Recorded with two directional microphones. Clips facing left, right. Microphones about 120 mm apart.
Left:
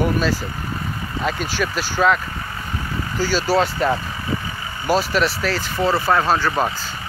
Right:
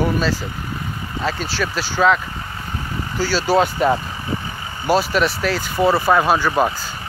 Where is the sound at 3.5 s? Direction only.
10° right (ahead or behind).